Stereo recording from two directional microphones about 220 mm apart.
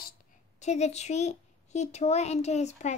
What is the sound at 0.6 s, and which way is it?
Speech, 30° left (ahead or behind).